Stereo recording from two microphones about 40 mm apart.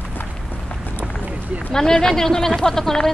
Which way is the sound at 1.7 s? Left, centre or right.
Centre.